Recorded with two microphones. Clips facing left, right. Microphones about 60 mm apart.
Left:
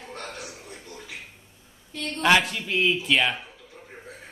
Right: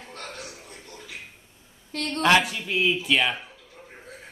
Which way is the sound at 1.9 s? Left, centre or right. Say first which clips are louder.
Right 3 dB; right.